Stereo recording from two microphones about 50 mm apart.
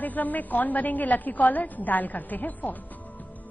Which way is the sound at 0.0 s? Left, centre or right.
Left.